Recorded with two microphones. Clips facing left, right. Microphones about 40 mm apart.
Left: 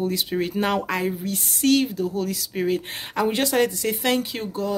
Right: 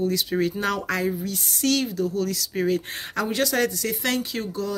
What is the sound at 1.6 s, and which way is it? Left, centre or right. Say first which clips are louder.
Speech: left 3 dB; left.